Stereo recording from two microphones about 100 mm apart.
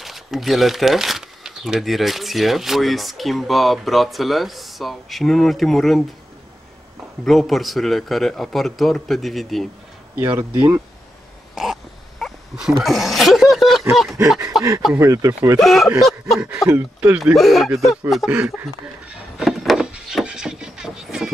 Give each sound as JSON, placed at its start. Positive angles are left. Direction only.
{"t": 0.0, "sound": "speech", "side_deg": 0}
{"t": 7.2, "sound": "speech", "side_deg": 0}
{"t": 10.1, "sound": "speech", "side_deg": -20}
{"t": 11.5, "sound": "a sound", "side_deg": 0}
{"t": 14.5, "sound": "speech", "side_deg": 0}
{"t": 15.0, "sound": "speech", "side_deg": -30}
{"t": 15.6, "sound": "speech", "side_deg": 0}
{"t": 16.6, "sound": "speech", "side_deg": -15}
{"t": 17.2, "sound": "speech", "side_deg": 0}
{"t": 18.3, "sound": "a sound", "side_deg": -15}
{"t": 19.9, "sound": "music", "side_deg": -5}